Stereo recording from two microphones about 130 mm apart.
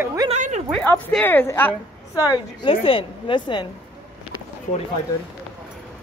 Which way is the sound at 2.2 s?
35° left (ahead or behind).